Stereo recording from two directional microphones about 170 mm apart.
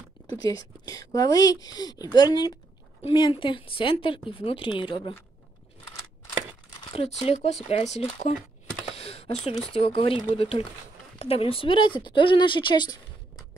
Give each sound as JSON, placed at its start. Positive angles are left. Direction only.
{"t": 0.4, "sound": "speech", "side_deg": 20}
{"t": 6.8, "sound": "speech", "side_deg": 35}
{"t": 8.9, "sound": "a sound", "side_deg": 35}
{"t": 9.8, "sound": "speech", "side_deg": 30}